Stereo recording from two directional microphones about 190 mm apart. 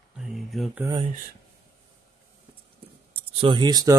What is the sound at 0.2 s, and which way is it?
Mantra, centre (ahead or behind).